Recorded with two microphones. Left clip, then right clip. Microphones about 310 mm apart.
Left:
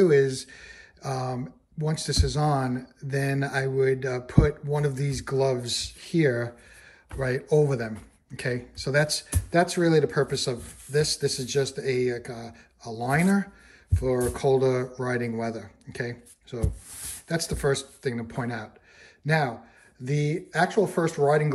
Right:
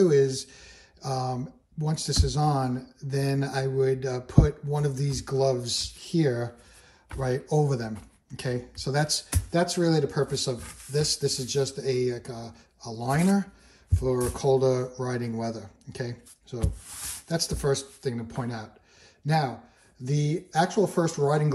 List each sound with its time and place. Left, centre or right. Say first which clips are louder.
0.0 s speech: left 1 dB; centre
10.5 s speech: left 3 dB; centre